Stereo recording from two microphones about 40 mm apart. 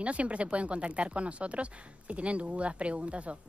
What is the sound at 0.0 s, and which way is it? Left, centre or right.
Speech, right.